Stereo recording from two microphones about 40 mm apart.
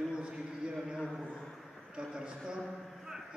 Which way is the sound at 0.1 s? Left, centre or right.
Right.